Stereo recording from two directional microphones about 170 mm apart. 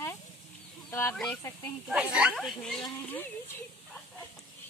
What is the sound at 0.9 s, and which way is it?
Speech, 15° left (ahead or behind).